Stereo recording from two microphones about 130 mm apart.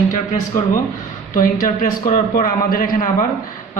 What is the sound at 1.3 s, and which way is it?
A man's voice, 90° left.